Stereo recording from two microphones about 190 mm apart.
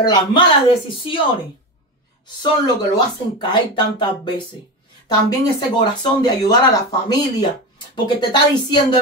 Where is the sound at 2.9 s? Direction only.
25° left (ahead or behind).